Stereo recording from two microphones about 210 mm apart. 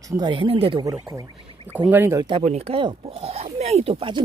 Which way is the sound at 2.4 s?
30° right (ahead or behind).